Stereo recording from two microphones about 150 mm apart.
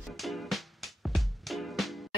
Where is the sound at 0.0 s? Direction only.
Centre (ahead or behind).